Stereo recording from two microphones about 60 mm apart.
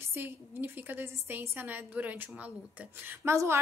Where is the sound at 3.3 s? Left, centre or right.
Right.